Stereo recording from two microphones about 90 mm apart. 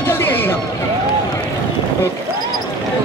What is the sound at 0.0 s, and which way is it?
Run, 25° left (ahead or behind).